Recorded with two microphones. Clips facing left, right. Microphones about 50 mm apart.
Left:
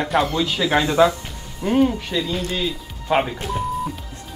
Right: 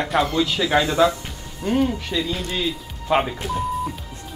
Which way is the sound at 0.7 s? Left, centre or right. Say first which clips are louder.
Left 1 dB; centre.